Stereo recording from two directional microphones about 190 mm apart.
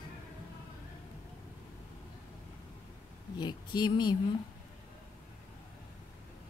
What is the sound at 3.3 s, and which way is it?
Speech, 25° left (ahead or behind).